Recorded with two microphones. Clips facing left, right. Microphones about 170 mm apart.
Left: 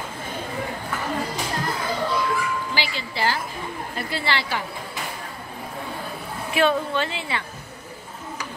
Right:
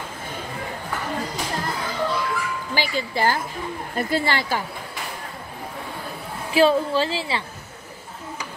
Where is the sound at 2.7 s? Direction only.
45° right (ahead or behind).